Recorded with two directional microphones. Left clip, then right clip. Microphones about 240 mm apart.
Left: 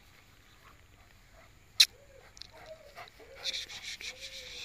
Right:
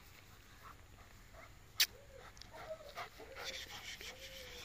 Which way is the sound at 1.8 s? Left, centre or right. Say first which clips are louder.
Left 11 dB; centre.